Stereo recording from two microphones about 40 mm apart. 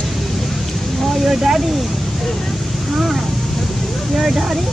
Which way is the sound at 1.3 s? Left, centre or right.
Centre.